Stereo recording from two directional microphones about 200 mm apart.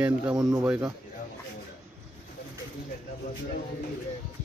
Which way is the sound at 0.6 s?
5° right (ahead or behind).